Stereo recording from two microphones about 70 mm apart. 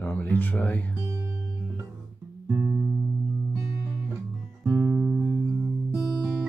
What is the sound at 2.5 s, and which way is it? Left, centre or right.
Music, right.